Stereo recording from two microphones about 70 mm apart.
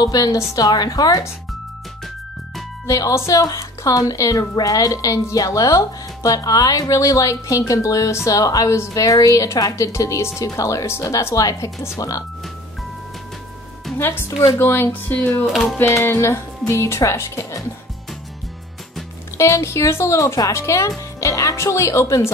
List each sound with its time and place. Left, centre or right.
0.0 s a woman's voice: left
2.9 s speech: left
8.3 s a woman's voice: left
13.9 s a woman's voice: left
14.9 s speech: left
15.8 s a woman's voice: left
19.3 s a woman's voice: left